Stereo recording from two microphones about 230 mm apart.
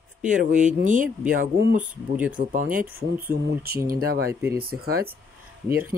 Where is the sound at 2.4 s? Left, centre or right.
Right.